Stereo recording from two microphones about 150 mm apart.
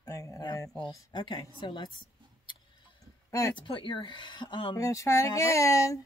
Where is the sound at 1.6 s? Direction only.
30° left (ahead or behind).